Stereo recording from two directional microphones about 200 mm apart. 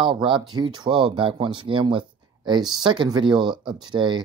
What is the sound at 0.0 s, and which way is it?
Speech, 25° right (ahead or behind).